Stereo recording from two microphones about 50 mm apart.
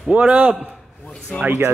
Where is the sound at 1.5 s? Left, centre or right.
Right.